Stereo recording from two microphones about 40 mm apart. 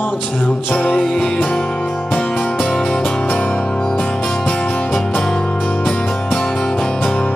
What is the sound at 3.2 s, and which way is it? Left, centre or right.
Music, left.